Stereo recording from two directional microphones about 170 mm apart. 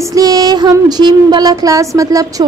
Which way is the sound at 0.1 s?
20° right (ahead or behind).